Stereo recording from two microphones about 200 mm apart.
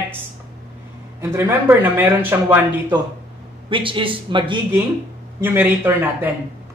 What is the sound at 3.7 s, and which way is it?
Speech, 25° right (ahead or behind).